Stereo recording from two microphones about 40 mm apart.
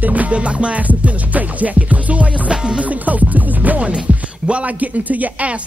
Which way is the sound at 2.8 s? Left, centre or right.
Right.